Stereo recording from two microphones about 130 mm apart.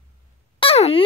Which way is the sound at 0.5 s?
50° left (ahead or behind).